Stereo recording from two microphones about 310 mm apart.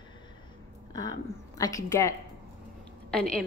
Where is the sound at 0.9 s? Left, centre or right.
Centre.